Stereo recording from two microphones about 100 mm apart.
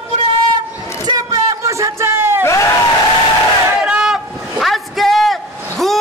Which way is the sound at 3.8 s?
5° right (ahead or behind).